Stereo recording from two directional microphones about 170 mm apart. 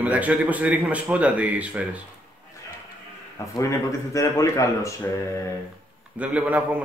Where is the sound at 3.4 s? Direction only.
20° left (ahead or behind).